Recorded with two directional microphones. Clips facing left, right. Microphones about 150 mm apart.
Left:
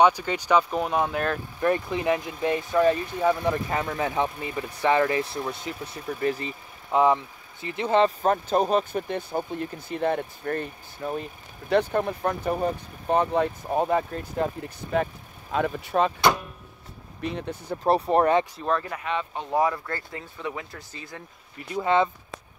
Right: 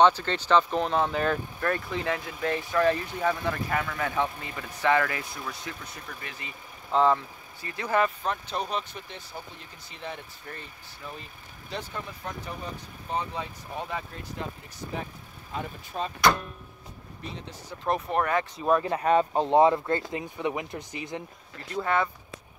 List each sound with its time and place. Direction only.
0.0 s speech: 10° left (ahead or behind)
1.6 s speech: 15° left (ahead or behind)
3.7 s speech: 25° left (ahead or behind)
6.2 s speech: 40° left (ahead or behind)
6.9 s speech: 15° left (ahead or behind)
8.2 s speech: 45° left (ahead or behind)
15.5 s speech: 80° left
17.2 s speech: 60° left (ahead or behind)
17.8 s speech: 35° left (ahead or behind)
18.6 s speech: 10° right (ahead or behind)
18.9 s speech: 40° right (ahead or behind)
19.4 s speech: 25° right (ahead or behind)
21.7 s speech: 20° left (ahead or behind)